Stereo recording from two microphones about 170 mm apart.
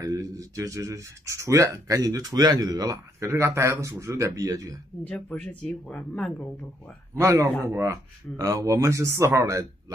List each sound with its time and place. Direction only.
0.0 s speech: 20° right (ahead or behind)
5.0 s speech: 5° left (ahead or behind)
7.2 s speech: 15° right (ahead or behind)